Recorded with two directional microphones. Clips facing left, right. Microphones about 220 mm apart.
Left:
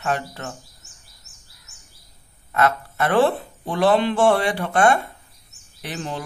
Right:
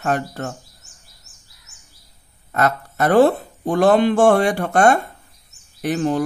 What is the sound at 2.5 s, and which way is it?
Speech, 40° right (ahead or behind).